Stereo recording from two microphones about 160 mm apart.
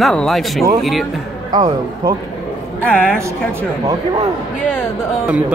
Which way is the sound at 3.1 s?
20° right (ahead or behind).